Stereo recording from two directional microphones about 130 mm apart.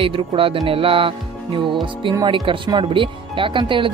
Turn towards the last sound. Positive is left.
turn(degrees=-40)  # may be behind; listen again after turning